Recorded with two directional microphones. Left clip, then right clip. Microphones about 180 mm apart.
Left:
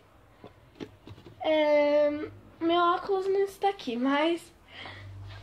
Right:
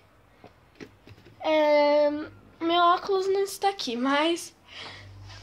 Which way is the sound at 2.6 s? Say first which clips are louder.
Right 3 dB; 15° right (ahead or behind).